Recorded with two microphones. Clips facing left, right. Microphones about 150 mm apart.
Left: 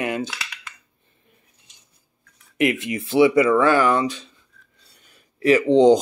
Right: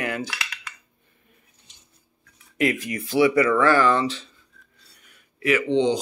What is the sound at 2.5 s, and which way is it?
Speech, 20° left (ahead or behind).